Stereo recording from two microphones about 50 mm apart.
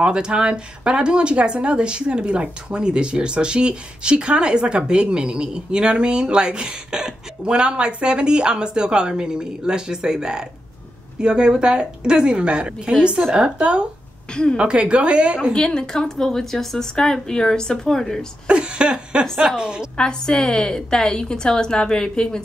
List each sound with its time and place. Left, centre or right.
0.0 s a woman's voice: centre
14.3 s a woman's voice: centre
14.6 s a woman's voice: right
15.5 s a woman's voice: centre
18.5 s a woman's voice: centre
20.0 s a woman's voice: centre